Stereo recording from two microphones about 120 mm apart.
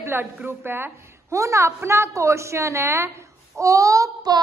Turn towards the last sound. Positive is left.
turn(degrees=-30)  # may be behind; listen again after turning